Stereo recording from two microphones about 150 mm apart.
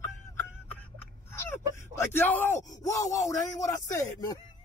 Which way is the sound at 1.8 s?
15° left (ahead or behind).